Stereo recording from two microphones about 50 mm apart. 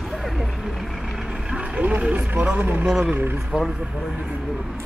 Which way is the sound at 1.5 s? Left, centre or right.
Right.